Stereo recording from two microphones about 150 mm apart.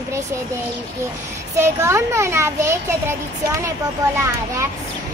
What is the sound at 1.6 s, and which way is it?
A child's voice, 20° right (ahead or behind).